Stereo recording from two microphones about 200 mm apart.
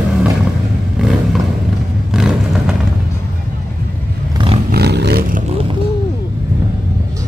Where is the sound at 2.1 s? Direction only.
Centre (ahead or behind).